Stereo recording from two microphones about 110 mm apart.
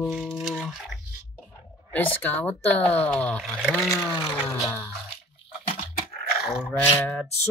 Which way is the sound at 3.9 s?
25° left (ahead or behind).